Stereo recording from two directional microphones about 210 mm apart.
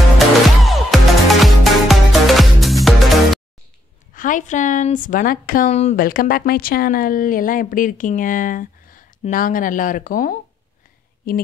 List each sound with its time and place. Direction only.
0.7 s music: centre (ahead or behind)
4.1 s a woman's voice: 40° left (ahead or behind)